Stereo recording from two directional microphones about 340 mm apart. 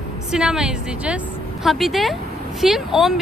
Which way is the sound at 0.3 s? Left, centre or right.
Centre.